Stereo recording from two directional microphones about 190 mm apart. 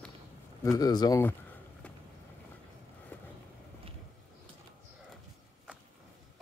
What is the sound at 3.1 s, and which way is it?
Vehicle, 10° left (ahead or behind).